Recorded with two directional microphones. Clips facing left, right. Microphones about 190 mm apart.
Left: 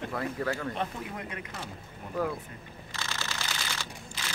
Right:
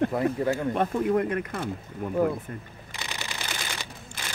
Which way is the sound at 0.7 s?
50° right (ahead or behind).